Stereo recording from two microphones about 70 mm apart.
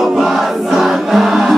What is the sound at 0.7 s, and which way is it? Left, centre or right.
Music, centre.